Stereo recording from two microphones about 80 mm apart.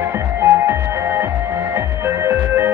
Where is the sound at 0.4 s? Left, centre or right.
Right.